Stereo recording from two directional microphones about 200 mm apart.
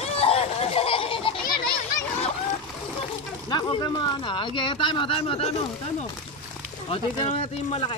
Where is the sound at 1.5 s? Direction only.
25° left (ahead or behind).